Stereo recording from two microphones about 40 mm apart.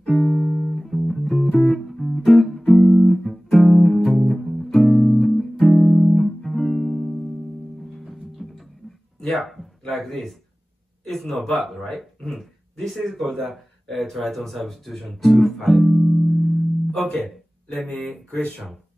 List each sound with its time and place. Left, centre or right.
0.0 s music: centre
9.2 s a sound: centre
11.9 s speech: centre